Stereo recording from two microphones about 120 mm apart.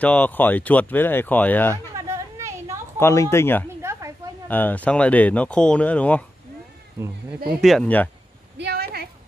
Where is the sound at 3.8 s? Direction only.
25° right (ahead or behind).